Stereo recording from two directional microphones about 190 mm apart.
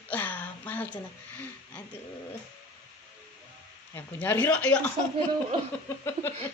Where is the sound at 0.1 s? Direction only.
10° left (ahead or behind).